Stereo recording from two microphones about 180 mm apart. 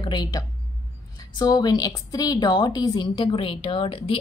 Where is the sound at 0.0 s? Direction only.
25° left (ahead or behind).